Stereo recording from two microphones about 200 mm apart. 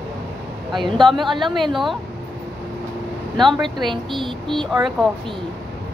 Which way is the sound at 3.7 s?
25° right (ahead or behind).